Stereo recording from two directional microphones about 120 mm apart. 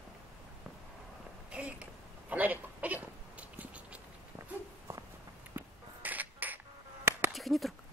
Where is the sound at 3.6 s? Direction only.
10° right (ahead or behind).